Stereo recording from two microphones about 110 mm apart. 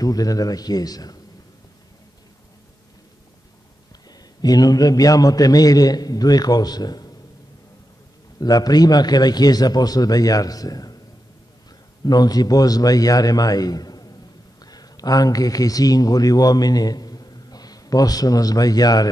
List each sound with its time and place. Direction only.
0.0 s a man's voice: 35° left (ahead or behind)
4.1 s a man's voice: 35° left (ahead or behind)
8.4 s a man's voice: 35° left (ahead or behind)
12.0 s a man's voice: 35° left (ahead or behind)